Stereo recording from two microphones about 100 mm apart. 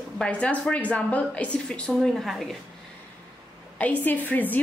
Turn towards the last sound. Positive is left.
turn(degrees=15)  # may be behind; listen again after turning